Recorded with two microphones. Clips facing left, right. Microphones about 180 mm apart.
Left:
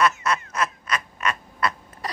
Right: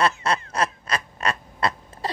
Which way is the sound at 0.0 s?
30° right (ahead or behind).